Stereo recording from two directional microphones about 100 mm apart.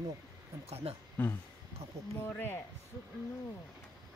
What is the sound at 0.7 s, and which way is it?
Speech, 90° right.